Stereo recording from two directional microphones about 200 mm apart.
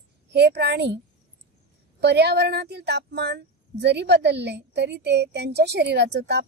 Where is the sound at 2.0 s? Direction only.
55° right (ahead or behind).